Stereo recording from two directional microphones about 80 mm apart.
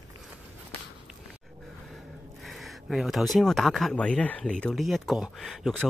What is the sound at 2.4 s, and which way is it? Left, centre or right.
Speech, centre.